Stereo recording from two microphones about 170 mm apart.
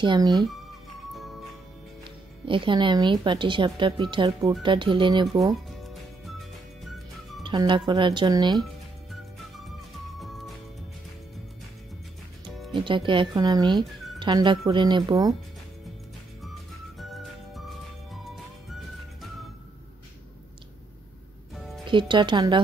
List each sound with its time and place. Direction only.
0.0 s speech: 25° right (ahead or behind)
1.1 s music: centre (ahead or behind)
2.0 s speech: 30° right (ahead or behind)
5.8 s music: centre (ahead or behind)
7.4 s speech: 30° right (ahead or behind)
10.1 s music: centre (ahead or behind)
12.4 s music: centre (ahead or behind)
12.7 s speech: 30° right (ahead or behind)
17.0 s music: centre (ahead or behind)
21.8 s speech: 30° right (ahead or behind)